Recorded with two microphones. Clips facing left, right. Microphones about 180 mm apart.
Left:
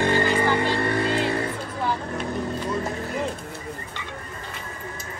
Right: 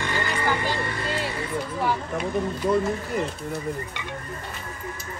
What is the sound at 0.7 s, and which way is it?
Music, 60° left (ahead or behind).